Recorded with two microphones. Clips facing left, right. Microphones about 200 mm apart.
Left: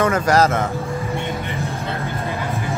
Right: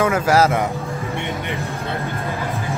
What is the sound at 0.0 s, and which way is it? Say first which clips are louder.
Speech: even; 5° right (ahead or behind).